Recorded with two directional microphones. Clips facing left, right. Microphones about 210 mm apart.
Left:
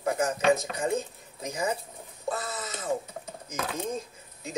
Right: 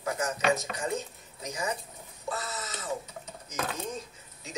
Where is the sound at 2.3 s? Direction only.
55° left (ahead or behind).